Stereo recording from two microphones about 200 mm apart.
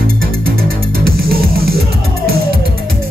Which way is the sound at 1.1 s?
50° right (ahead or behind).